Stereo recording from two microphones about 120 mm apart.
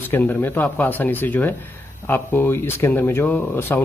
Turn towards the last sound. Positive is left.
turn(degrees=20)  # may be behind; listen again after turning